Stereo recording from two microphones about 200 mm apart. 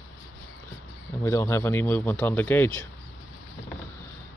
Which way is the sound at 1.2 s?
15° left (ahead or behind).